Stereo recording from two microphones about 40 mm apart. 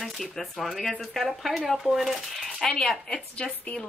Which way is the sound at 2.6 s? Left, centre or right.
Centre.